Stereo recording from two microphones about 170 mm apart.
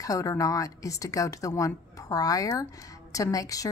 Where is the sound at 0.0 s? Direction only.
20° left (ahead or behind).